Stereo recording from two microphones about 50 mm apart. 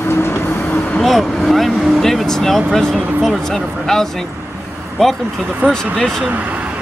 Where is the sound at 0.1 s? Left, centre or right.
Left.